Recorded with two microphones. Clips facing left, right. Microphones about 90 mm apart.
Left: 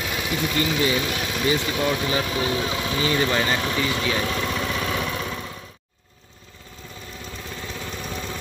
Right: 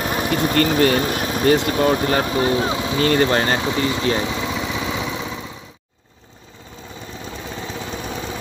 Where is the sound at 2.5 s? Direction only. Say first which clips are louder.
Right 5 dB; 25° right (ahead or behind).